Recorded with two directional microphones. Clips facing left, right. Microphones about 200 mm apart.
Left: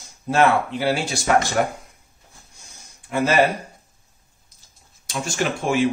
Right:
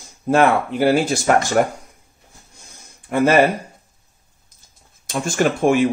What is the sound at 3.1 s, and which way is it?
Speech, 55° right (ahead or behind).